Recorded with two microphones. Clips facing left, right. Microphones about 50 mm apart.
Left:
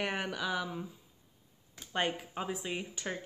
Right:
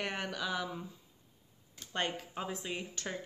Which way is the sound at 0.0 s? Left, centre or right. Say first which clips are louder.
Left 2 dB; centre.